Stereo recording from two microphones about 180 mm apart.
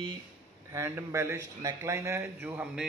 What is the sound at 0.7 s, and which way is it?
Speech, 15° right (ahead or behind).